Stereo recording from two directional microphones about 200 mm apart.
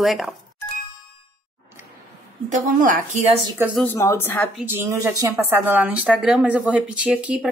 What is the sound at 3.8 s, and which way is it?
Speech, 10° left (ahead or behind).